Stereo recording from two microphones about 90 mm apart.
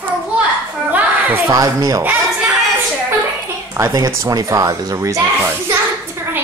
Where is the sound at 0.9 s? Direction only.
20° right (ahead or behind).